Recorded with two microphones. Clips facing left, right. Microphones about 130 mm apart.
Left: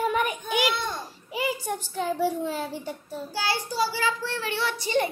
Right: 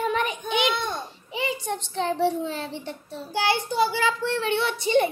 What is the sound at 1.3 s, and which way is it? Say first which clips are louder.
A child's voice: even; 5° left (ahead or behind).